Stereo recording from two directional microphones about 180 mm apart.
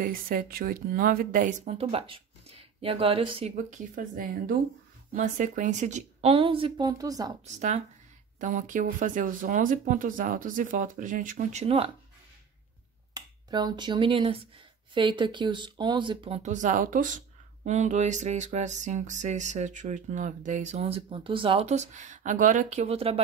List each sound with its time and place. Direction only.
0.0 s speech: 50° right (ahead or behind)
1.7 s speech: 35° right (ahead or behind)
3.5 s a woman's voice: 45° right (ahead or behind); by 7.3 s 20° right (ahead or behind)
7.4 s a sound: 40° right (ahead or behind)
8.4 s speech: 45° right (ahead or behind)
11.6 s a sound: 35° right (ahead or behind)
13.1 s a woman's voice: 25° right (ahead or behind)
16.4 s speech: 45° right (ahead or behind)
17.6 s a sound: 40° right (ahead or behind)